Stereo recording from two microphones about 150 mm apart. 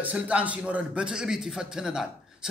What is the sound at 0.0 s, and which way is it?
A man's voice, 10° right (ahead or behind).